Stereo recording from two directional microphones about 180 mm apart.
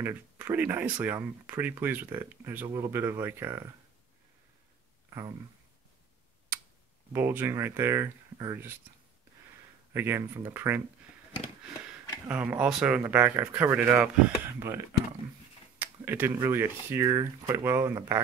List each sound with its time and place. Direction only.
0.0 s speech: 10° right (ahead or behind)
7.1 s speech: 10° right (ahead or behind)
9.9 s speech: 15° right (ahead or behind)
12.3 s speech: 10° right (ahead or behind)